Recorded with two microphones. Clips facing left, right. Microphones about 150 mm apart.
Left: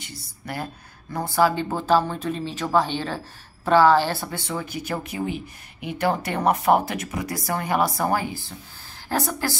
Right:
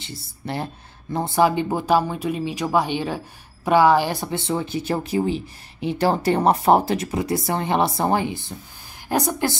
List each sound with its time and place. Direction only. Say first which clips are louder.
0.0 s speech: right 5 dB; 25° right (ahead or behind)